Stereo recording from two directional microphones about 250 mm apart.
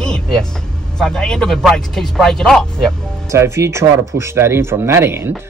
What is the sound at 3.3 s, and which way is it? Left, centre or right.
Speech, centre.